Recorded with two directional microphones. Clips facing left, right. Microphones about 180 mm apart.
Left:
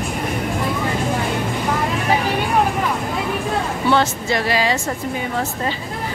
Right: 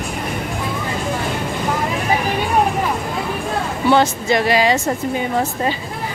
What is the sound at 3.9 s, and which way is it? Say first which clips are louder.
Speech: right 4 dB; 15° right (ahead or behind).